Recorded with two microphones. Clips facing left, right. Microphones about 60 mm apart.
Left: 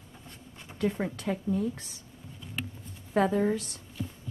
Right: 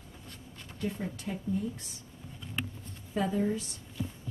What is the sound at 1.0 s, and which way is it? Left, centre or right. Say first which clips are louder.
Speech: left 5 dB; left.